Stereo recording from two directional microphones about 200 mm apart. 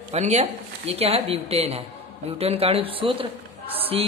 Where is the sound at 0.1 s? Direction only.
35° right (ahead or behind).